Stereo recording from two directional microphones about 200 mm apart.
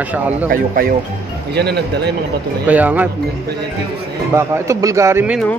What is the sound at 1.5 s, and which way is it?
Speech, 55° right (ahead or behind).